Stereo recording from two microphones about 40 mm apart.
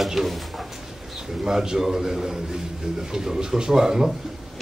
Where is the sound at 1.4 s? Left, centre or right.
Centre.